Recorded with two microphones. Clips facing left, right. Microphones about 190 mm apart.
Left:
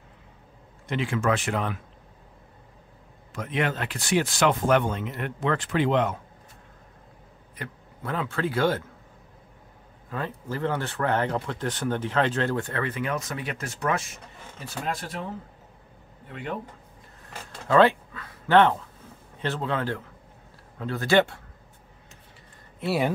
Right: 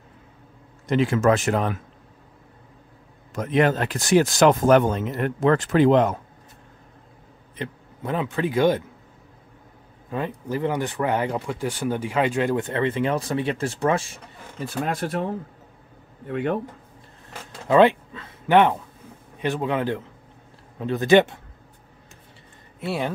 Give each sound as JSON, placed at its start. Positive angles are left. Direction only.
{"t": 0.8, "sound": "speech", "side_deg": -40}
{"t": 3.3, "sound": "speech", "side_deg": -40}
{"t": 7.5, "sound": "speech", "side_deg": -20}
{"t": 10.0, "sound": "speech", "side_deg": -20}
{"t": 16.3, "sound": "speech", "side_deg": -60}
{"t": 17.6, "sound": "speech", "side_deg": -20}
{"t": 22.8, "sound": "speech", "side_deg": 5}